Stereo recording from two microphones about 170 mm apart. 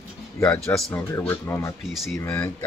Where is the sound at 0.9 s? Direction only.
15° left (ahead or behind).